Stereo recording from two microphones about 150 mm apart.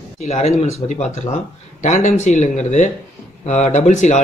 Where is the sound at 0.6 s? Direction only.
45° left (ahead or behind).